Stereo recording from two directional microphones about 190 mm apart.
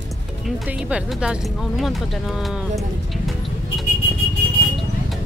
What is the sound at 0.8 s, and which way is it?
Speech, 5° right (ahead or behind).